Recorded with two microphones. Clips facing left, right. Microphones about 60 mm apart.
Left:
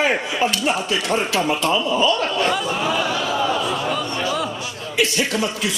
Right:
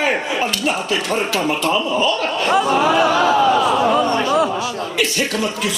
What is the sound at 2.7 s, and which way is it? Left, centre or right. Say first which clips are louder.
Speech: right 7 dB; right.